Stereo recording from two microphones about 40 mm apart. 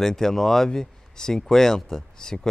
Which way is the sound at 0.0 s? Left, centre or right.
Centre.